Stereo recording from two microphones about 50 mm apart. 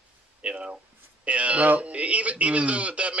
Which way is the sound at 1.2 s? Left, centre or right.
Right.